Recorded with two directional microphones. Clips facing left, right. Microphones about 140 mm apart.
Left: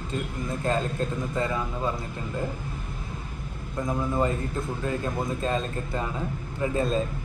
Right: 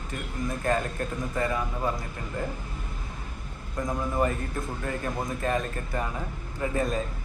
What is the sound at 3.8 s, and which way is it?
A man's voice, 25° left (ahead or behind).